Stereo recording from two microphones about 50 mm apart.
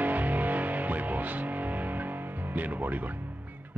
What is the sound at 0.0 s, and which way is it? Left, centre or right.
Music, right.